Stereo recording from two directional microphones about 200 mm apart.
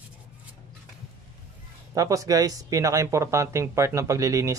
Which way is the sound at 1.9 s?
15° right (ahead or behind).